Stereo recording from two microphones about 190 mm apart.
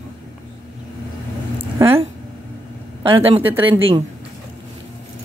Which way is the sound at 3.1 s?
30° right (ahead or behind).